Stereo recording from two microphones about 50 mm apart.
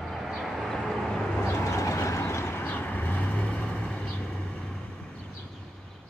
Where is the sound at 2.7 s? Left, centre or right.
Left.